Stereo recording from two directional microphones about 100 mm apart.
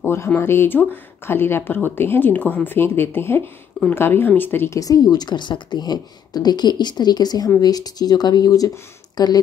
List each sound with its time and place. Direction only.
0.0 s speech: 25° left (ahead or behind)
4.7 s a woman's voice: 35° left (ahead or behind)